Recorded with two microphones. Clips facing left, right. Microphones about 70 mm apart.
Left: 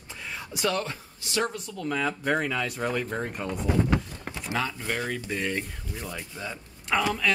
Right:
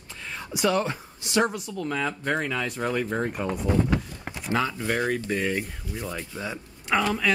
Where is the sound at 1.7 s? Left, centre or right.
Centre.